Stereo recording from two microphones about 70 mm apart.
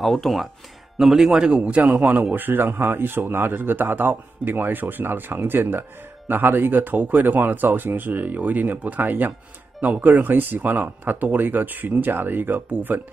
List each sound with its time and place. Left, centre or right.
0.0 s a man's voice: centre; by 13.0 s right